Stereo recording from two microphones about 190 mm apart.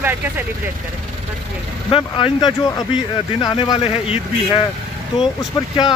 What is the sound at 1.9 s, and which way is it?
Speech, 25° left (ahead or behind).